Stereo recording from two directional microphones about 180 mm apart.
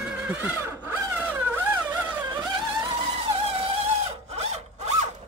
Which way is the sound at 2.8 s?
30° right (ahead or behind).